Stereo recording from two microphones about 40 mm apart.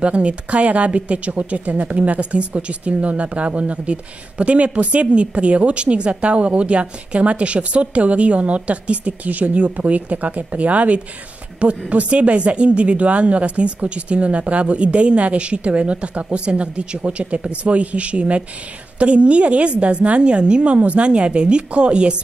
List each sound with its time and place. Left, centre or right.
0.0 s a woman's voice: right